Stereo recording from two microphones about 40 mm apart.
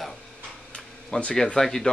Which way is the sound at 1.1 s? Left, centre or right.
Left.